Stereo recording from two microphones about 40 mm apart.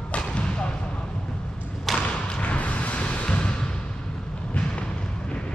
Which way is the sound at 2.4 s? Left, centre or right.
Left.